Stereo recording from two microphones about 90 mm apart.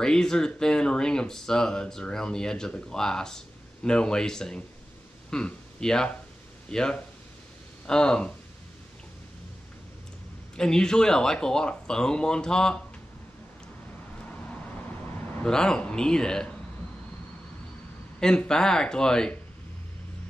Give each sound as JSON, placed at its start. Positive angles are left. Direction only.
{"t": 0.0, "sound": "speech", "side_deg": 5}
{"t": 10.5, "sound": "speech", "side_deg": 5}
{"t": 15.4, "sound": "speech", "side_deg": 10}
{"t": 18.2, "sound": "speech", "side_deg": 10}